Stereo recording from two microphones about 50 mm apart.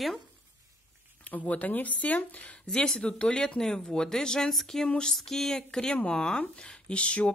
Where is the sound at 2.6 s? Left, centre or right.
Centre.